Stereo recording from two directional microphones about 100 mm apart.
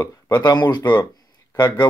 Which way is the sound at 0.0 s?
30° left (ahead or behind).